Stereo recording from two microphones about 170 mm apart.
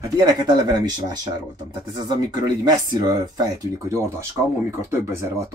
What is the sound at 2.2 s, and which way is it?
Speech, 20° right (ahead or behind).